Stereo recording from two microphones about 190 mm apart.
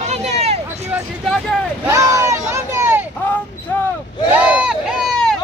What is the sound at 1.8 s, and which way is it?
Vehicle, 15° right (ahead or behind).